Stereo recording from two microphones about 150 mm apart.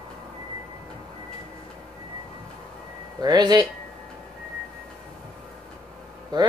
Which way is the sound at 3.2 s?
25° right (ahead or behind).